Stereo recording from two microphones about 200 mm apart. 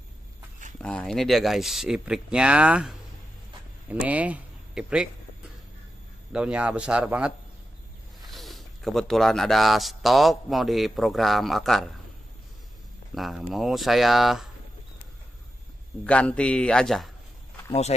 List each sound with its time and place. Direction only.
0.7 s speech: 5° left (ahead or behind)
4.0 s speech: 5° right (ahead or behind)
6.3 s speech: 5° right (ahead or behind)
13.1 s speech: centre (ahead or behind)
16.0 s speech: 5° left (ahead or behind)
17.6 s speech: 30° left (ahead or behind)